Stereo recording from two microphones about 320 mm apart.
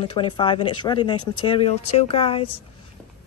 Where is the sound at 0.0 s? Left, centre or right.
Centre.